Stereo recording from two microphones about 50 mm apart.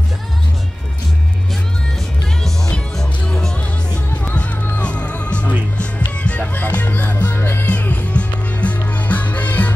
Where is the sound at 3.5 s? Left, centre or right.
Left.